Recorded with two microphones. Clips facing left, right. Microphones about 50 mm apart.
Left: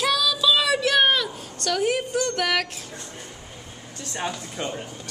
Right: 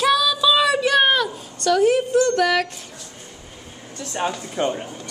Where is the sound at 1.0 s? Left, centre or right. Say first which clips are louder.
Right 2 dB; centre.